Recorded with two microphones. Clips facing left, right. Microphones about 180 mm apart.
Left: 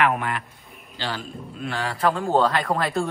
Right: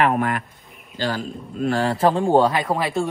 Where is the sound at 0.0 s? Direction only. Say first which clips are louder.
Right 3 dB; 40° right (ahead or behind).